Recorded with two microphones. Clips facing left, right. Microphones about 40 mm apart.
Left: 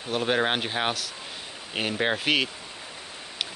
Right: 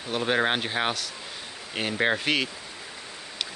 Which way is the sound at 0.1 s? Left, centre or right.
Centre.